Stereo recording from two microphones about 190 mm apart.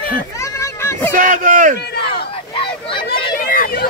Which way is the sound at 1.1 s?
45° right (ahead or behind).